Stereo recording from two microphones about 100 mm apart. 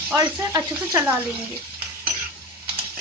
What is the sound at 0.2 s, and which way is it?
Speech, 30° right (ahead or behind).